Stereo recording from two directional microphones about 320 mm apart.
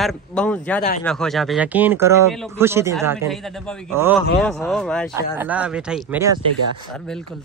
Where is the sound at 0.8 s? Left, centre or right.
Left.